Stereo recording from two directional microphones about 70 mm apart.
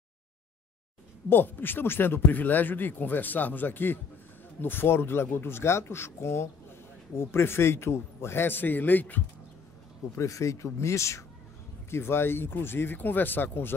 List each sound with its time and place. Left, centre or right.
1.3 s a man's voice: left
10.1 s a man's voice: left